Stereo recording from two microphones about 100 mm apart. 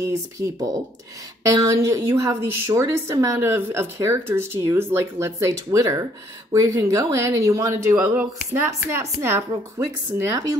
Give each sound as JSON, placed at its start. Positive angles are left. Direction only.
{"t": 0.0, "sound": "a woman's voice", "side_deg": -35}